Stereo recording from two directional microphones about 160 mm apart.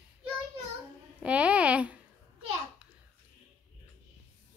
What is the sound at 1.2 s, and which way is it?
Speech, 10° right (ahead or behind).